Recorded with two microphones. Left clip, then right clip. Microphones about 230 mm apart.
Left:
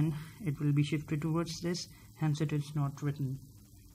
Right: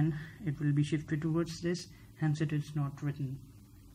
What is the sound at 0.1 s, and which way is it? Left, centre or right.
Speech, left.